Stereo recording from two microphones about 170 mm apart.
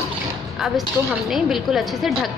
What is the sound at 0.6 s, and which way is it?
A woman's voice, centre (ahead or behind).